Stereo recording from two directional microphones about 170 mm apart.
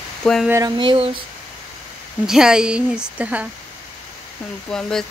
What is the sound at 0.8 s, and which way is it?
Speech, 30° right (ahead or behind).